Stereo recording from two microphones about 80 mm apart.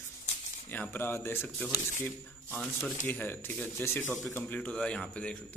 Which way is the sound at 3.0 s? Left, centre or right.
Left.